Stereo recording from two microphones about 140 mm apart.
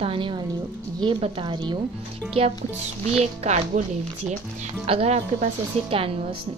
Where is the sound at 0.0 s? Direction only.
40° right (ahead or behind).